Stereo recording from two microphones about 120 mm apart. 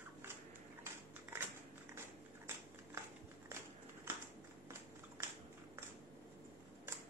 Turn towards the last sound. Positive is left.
turn(degrees=-25)  # may be behind; listen again after turning